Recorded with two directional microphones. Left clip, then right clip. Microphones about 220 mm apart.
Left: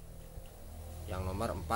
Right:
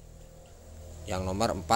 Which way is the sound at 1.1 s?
30° right (ahead or behind).